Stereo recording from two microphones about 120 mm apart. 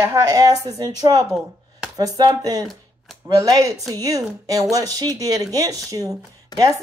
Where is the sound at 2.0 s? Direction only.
30° right (ahead or behind).